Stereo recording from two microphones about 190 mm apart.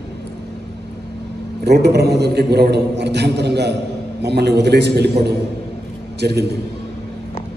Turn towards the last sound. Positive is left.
turn(degrees=-60)  # may be behind; listen again after turning